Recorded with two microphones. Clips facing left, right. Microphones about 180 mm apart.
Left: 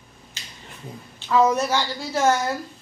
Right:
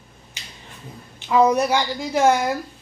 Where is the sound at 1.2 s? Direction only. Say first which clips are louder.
Right 2 dB; 15° right (ahead or behind).